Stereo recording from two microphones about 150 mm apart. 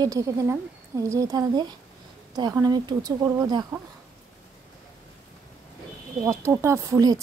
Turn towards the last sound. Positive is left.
turn(degrees=-25)  # may be behind; listen again after turning